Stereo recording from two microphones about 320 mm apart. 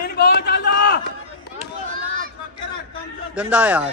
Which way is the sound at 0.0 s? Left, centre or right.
Left.